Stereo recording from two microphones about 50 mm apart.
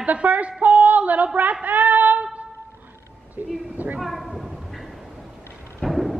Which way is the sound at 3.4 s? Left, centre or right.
Right.